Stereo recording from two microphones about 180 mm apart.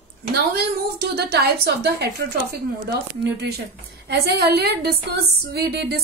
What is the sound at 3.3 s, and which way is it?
A woman's voice, 65° right (ahead or behind).